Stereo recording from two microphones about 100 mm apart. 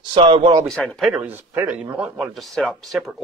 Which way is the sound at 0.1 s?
60° right (ahead or behind).